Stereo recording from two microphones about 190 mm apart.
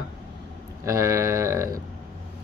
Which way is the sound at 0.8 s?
15° right (ahead or behind).